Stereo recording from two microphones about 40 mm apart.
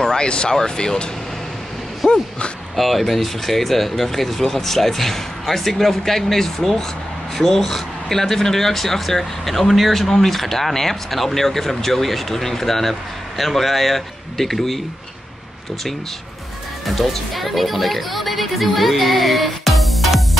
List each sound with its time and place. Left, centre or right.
0.0 s speech: centre
2.0 s speech: centre
2.7 s speech: centre
16.8 s speech: centre